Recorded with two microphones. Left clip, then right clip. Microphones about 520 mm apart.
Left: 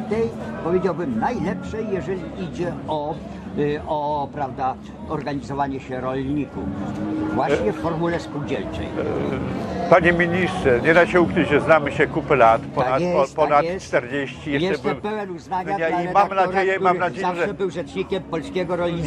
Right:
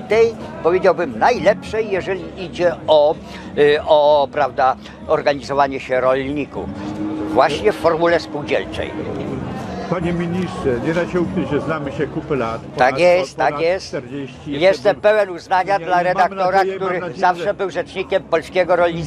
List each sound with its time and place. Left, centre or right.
0.1 s a man's voice: right
7.3 s a man's voice: right
9.9 s a man's voice: left
12.7 s speech: right
16.9 s a man's voice: left
17.2 s speech: right